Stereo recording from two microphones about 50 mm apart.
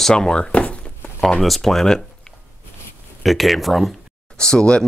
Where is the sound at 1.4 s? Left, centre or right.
Centre.